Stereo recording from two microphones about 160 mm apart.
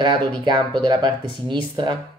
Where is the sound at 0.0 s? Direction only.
30° right (ahead or behind).